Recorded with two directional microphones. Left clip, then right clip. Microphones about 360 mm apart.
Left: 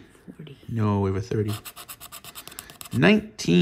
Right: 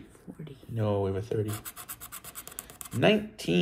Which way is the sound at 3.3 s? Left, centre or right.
Centre.